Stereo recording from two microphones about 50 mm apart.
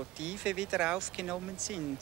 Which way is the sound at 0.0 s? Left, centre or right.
Centre.